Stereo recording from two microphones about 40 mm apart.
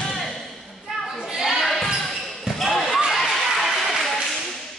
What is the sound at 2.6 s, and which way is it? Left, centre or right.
Slam, centre.